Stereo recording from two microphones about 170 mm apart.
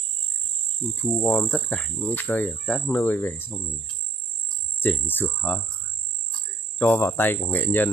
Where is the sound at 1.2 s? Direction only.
10° left (ahead or behind).